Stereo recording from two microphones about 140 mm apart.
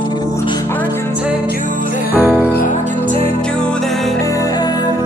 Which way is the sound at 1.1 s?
5° right (ahead or behind).